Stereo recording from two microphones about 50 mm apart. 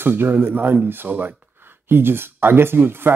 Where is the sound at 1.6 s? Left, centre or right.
Right.